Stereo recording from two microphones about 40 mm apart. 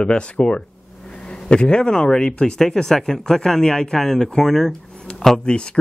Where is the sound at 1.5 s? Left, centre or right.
Left; by 4.7 s centre.